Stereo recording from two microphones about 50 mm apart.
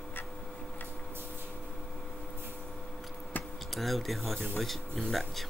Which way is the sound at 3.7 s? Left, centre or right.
Centre.